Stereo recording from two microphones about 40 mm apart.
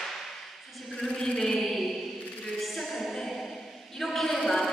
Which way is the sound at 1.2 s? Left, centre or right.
Centre.